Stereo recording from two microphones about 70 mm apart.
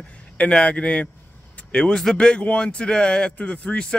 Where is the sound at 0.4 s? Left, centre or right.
Centre.